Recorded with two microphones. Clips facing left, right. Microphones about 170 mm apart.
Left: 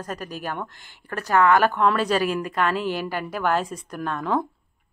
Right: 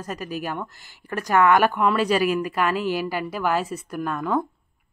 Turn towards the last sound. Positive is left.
turn(degrees=-5)  # may be behind; listen again after turning